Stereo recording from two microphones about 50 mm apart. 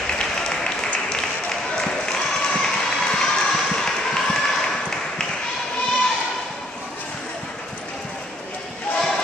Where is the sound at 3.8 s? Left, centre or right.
Centre.